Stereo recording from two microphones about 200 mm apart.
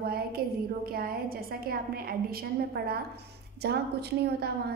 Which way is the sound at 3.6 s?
55° right (ahead or behind).